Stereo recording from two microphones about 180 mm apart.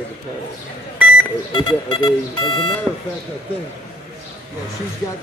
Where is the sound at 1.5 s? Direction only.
25° left (ahead or behind).